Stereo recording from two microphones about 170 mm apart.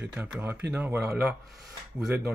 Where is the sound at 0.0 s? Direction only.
10° right (ahead or behind).